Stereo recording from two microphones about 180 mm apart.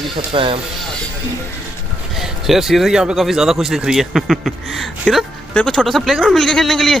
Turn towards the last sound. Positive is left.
turn(degrees=0)  # may be behind; listen again after turning